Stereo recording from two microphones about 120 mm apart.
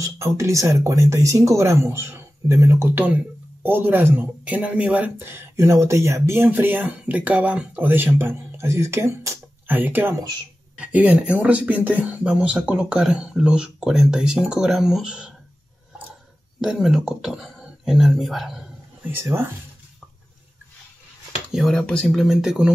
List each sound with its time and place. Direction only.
0.0 s speech: 25° right (ahead or behind); by 15.3 s 5° right (ahead or behind)
16.6 s speech: 5° right (ahead or behind)
19.1 s speech: 20° right (ahead or behind)
21.5 s speech: centre (ahead or behind)